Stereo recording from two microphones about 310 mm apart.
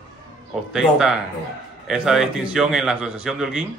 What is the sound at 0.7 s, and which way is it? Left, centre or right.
Speech, centre.